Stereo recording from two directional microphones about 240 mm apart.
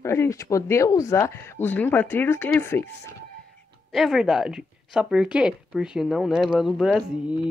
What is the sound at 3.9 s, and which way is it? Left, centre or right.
A woman's voice, centre.